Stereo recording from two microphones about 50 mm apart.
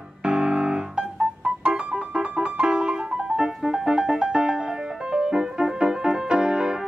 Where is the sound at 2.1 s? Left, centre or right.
Centre.